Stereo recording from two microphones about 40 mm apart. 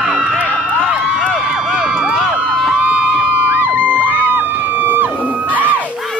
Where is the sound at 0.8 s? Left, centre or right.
Right.